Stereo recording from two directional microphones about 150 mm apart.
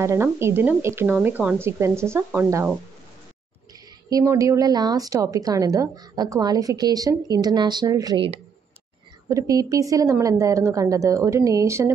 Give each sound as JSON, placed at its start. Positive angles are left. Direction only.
{"t": 0.0, "sound": "speech", "side_deg": -20}
{"t": 4.1, "sound": "speech", "side_deg": -20}
{"t": 9.3, "sound": "speech", "side_deg": -20}